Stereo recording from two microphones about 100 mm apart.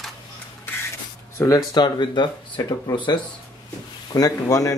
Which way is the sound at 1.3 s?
35° left (ahead or behind).